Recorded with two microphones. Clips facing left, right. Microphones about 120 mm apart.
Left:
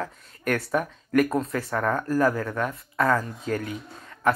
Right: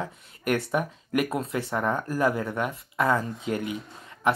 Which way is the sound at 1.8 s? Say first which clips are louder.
Left 3 dB; 15° right (ahead or behind).